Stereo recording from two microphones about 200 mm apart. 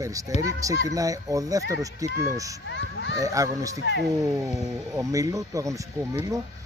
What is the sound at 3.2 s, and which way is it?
Speech, 15° right (ahead or behind).